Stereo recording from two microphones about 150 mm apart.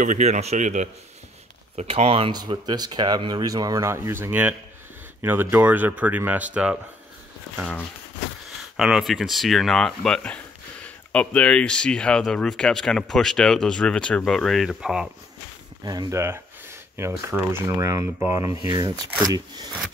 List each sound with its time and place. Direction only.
0.0 s a man's voice: 55° right (ahead or behind)
1.8 s speech: 45° right (ahead or behind); by 6.8 s 10° right (ahead or behind)
8.7 s speech: 5° right (ahead or behind)
15.8 s speech: 25° right (ahead or behind)